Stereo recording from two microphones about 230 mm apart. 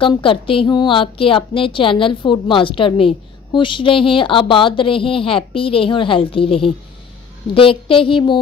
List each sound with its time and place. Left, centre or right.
0.0 s a woman's voice: left